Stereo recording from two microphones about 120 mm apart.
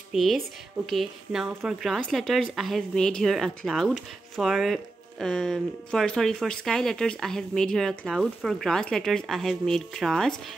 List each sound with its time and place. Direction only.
0.1 s speech: centre (ahead or behind)